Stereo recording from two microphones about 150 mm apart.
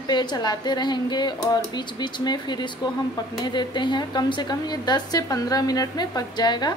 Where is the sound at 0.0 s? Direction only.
30° left (ahead or behind).